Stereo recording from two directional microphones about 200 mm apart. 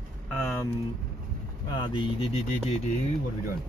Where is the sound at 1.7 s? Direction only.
20° left (ahead or behind).